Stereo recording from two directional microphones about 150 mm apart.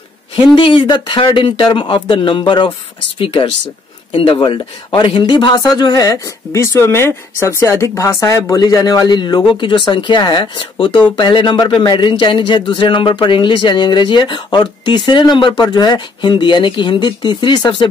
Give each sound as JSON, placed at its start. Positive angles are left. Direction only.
{"t": 0.6, "sound": "speech", "side_deg": 35}